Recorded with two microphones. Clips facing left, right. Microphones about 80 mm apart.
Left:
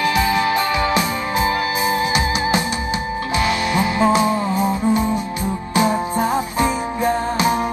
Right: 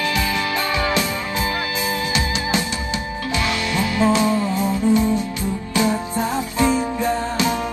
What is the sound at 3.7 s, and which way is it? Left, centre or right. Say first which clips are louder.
Music: left 1 dB; left.